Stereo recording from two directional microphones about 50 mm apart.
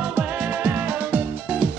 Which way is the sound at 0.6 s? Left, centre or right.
Right.